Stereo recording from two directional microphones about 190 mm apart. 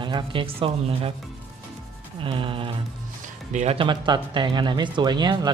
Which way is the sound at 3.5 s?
35° right (ahead or behind).